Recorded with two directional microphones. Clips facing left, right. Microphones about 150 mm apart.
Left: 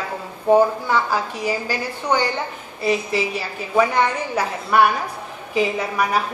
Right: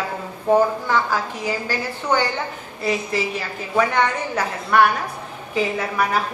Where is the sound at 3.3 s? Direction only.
10° left (ahead or behind).